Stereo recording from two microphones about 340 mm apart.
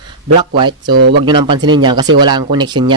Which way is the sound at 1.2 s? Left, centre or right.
Centre.